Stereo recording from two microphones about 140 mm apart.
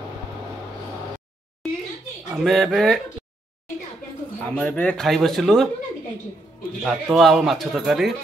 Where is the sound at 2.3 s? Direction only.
Centre (ahead or behind).